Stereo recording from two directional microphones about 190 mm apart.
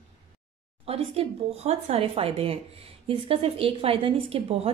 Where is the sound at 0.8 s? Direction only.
30° right (ahead or behind).